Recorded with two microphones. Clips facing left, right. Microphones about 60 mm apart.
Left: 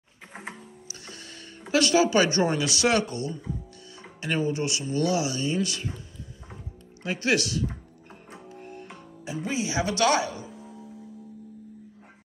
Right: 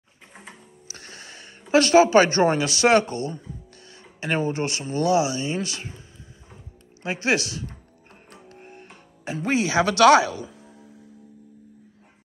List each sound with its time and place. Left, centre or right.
0.8 s music: right
1.2 s a sound: right
1.7 s speech: right
8.1 s music: centre
8.5 s music: right
9.2 s speech: right